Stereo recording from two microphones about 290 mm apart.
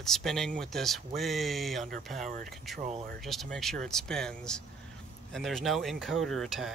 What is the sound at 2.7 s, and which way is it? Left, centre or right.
Speech, right.